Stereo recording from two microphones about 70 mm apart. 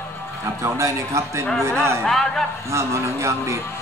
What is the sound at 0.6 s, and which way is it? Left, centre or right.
Speech, right.